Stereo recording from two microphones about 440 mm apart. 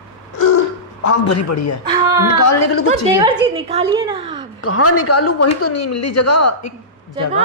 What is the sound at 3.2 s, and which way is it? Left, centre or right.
A woman's voice, centre.